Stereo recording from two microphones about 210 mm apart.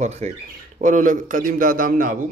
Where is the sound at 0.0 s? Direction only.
35° right (ahead or behind).